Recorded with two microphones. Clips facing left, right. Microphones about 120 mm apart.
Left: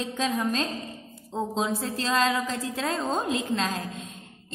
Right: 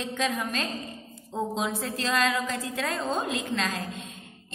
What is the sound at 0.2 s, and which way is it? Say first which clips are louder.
A woman's voice: left 3 dB; 35° left (ahead or behind).